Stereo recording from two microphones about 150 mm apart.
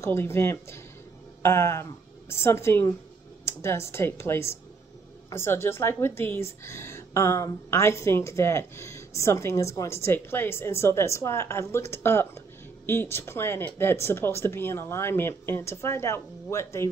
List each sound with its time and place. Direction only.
0.0 s a woman's voice: 15° left (ahead or behind)